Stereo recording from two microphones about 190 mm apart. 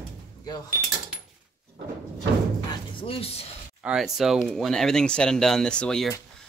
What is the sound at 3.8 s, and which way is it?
Speech, 5° right (ahead or behind).